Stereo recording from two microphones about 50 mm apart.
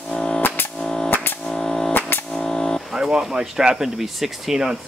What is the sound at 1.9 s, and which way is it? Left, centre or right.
Cap gun, left.